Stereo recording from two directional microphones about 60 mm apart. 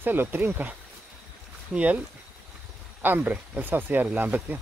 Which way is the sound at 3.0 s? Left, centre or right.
Right.